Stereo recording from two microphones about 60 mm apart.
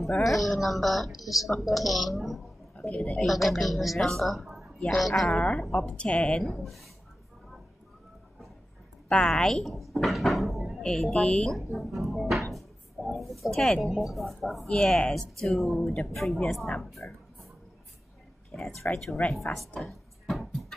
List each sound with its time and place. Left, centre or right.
0.0 s a woman's voice: centre
2.9 s a woman's voice: centre
5.3 s a woman's voice: centre
6.4 s a woman's voice: centre
9.1 s a woman's voice: centre
10.8 s drawer open or close: centre
14.0 s a woman's voice: centre
14.8 s speech: centre
15.4 s a woman's voice: centre
18.5 s a woman's voice: centre
19.8 s a sound: centre